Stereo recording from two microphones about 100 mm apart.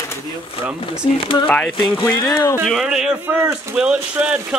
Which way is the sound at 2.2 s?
40° left (ahead or behind).